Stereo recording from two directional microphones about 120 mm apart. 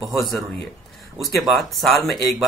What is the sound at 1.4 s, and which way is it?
Speech, centre (ahead or behind).